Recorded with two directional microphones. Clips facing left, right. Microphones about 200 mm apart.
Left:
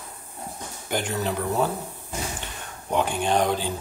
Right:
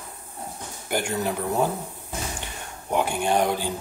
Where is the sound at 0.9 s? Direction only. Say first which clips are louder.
Right 1 dB; 10° right (ahead or behind).